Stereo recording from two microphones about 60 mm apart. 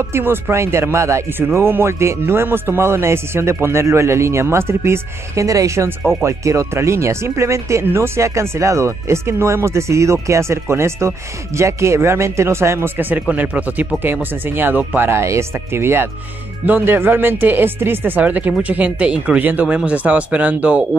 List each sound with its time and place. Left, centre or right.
0.1 s speech: right
5.4 s speech: right
5.9 s speech: right
7.8 s speech: right
13.3 s speech: right
15.0 s speech: right